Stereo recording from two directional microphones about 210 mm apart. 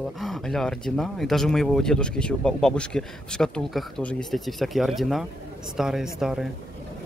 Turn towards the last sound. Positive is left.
turn(degrees=0)  # may be behind; listen again after turning